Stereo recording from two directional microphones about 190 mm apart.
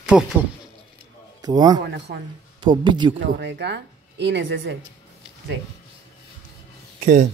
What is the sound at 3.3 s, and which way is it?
A woman's voice, 65° right (ahead or behind).